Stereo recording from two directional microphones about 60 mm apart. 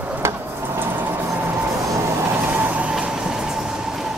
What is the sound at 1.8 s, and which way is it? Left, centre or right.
Vehicle, right.